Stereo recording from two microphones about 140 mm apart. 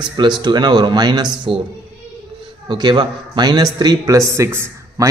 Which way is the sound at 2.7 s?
30° right (ahead or behind).